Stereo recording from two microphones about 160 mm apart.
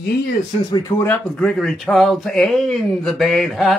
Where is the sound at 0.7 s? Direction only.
25° left (ahead or behind).